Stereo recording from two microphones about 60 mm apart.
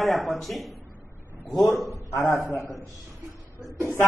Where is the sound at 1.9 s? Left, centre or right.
Left.